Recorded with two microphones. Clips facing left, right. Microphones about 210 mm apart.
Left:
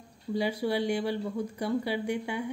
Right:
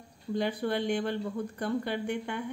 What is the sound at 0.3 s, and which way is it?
Speech, 10° left (ahead or behind).